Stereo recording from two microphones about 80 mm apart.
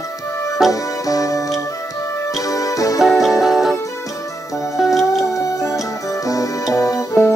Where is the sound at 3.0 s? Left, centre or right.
Centre.